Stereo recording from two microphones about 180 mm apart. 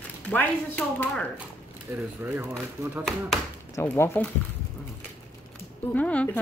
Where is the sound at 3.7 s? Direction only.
15° left (ahead or behind).